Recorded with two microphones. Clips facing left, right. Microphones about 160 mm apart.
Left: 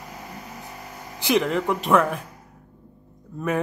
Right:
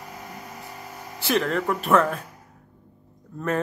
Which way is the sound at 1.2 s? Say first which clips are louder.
Left 2 dB; 15° left (ahead or behind).